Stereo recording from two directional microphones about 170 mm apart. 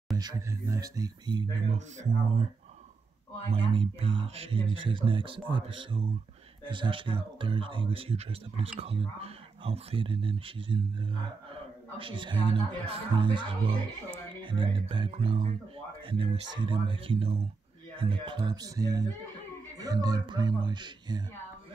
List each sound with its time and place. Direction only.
0.2 s speech: 20° right (ahead or behind)
1.7 s speech: 45° right (ahead or behind)
3.4 s speech: 30° right (ahead or behind)
16.5 s speech: 30° right (ahead or behind)